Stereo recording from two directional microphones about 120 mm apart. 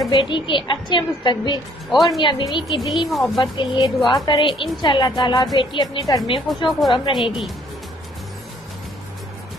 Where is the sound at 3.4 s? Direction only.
45° left (ahead or behind).